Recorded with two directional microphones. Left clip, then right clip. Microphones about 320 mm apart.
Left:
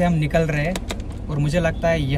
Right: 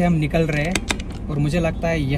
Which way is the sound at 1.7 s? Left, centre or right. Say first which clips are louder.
Left 5 dB; left.